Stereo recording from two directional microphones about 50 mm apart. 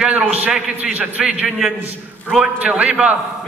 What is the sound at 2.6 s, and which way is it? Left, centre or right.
Speech, right.